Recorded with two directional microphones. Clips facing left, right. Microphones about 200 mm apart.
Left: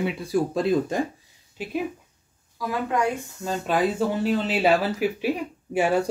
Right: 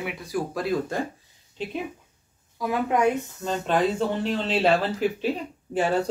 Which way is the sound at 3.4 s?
5° left (ahead or behind).